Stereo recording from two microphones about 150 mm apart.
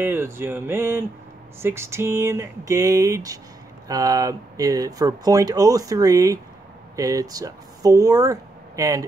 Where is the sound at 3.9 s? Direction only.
25° right (ahead or behind).